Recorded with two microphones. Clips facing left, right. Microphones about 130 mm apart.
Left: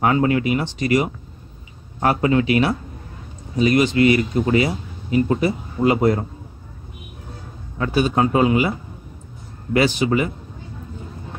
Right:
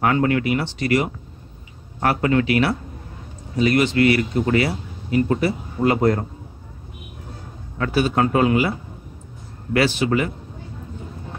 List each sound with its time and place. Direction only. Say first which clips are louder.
0.0 s speech: left 1 dB; 20° left (ahead or behind)
7.7 s a man's voice: left 1 dB; 20° left (ahead or behind)